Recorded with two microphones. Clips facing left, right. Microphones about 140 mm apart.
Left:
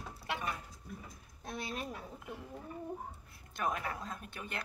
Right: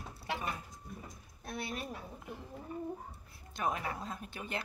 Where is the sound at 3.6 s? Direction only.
25° right (ahead or behind).